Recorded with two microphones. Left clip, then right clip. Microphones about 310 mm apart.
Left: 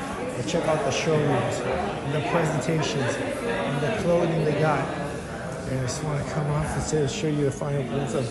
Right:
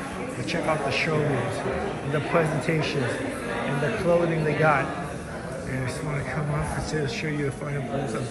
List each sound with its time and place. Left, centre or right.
0.5 s a man's voice: centre
2.1 s speech: centre
4.1 s speech: centre